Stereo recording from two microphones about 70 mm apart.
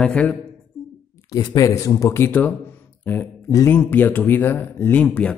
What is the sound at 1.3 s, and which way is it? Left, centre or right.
Speech, left.